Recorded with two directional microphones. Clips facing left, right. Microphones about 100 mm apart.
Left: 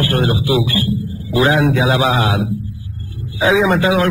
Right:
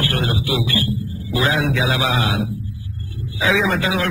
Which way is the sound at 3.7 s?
35° left (ahead or behind).